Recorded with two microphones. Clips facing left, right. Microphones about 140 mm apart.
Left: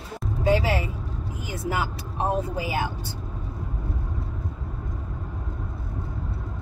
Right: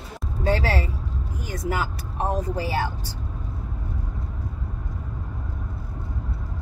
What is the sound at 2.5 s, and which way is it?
Speech, 15° left (ahead or behind).